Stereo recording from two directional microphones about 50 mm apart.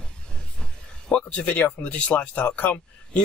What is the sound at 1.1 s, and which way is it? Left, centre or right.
Speech, left.